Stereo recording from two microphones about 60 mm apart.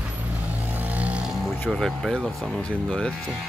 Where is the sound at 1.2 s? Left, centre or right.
Centre.